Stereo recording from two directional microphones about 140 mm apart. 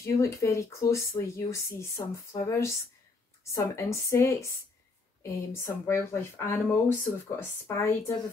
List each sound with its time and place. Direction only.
0.0 s speech: 20° left (ahead or behind)